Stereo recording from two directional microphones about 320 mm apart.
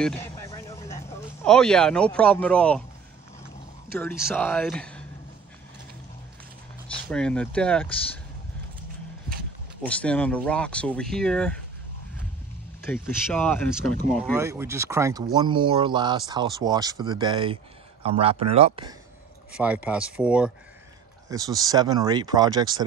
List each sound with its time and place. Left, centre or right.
0.0 s speech: centre
4.0 s speech: centre
7.1 s speech: centre
9.8 s speech: centre
12.8 s speech: centre
14.3 s speech: centre
19.5 s speech: centre